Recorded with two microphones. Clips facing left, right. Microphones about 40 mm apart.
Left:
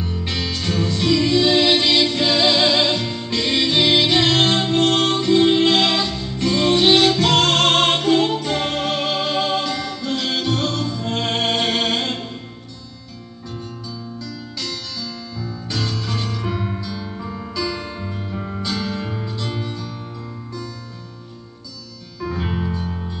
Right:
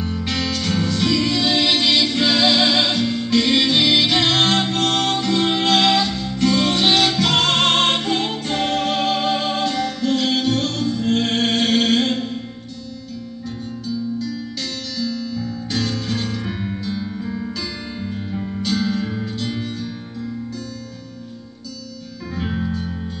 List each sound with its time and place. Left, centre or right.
0.0 s music: centre
7.3 s music: right
7.6 s music: centre
7.9 s music: centre
8.9 s music: centre
9.2 s music: centre
9.8 s music: right
10.1 s music: left
15.0 s guitar: right
16.1 s music: left
16.4 s music: centre
17.1 s music: centre
18.7 s music: centre
22.4 s music: centre